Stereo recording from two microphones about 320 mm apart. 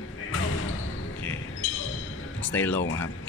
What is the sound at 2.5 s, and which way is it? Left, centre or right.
Speech, centre.